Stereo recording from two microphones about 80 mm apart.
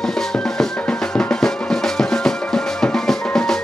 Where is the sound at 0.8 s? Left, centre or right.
Centre.